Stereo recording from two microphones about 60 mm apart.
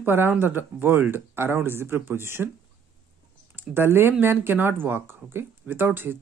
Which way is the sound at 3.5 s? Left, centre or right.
Right.